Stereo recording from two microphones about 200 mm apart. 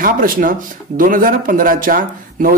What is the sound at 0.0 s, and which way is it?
Speech, 45° right (ahead or behind).